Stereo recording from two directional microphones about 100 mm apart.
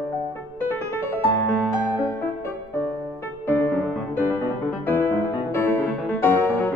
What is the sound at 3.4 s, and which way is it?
Music, 15° left (ahead or behind).